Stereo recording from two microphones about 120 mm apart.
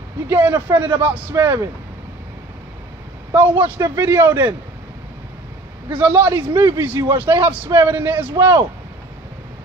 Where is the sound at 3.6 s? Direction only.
20° right (ahead or behind).